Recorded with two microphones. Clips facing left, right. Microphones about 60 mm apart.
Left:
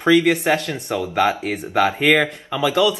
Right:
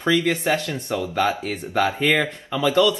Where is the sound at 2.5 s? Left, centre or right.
Centre.